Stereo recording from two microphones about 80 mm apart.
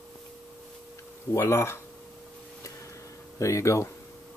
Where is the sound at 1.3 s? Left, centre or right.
Left.